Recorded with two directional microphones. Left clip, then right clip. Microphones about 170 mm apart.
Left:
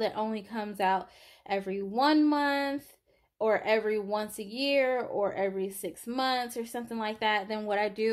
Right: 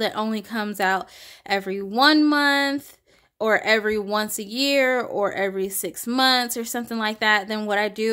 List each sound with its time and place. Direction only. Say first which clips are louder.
0.0 s speech: right 6 dB; 25° right (ahead or behind)